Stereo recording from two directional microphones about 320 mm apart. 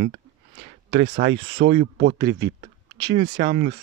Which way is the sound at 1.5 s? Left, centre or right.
Right.